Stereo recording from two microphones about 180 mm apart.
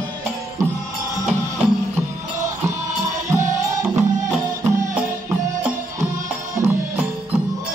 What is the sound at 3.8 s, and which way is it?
Music, 5° right (ahead or behind).